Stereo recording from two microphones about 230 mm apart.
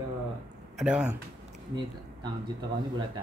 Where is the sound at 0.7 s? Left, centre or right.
Centre.